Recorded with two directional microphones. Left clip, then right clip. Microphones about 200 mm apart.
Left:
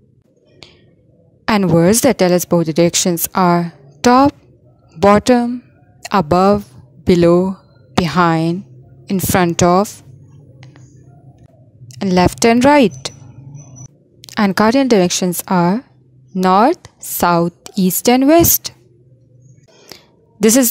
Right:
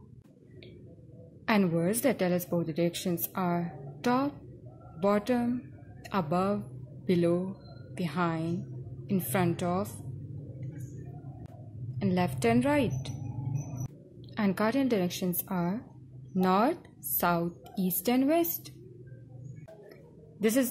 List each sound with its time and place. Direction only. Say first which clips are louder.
1.4 s speech: left 15 dB; 50° left (ahead or behind)
12.0 s speech: left 17 dB; 50° left (ahead or behind)
14.2 s speech: left 16 dB; 50° left (ahead or behind)
20.3 s speech: left 15 dB; 50° left (ahead or behind)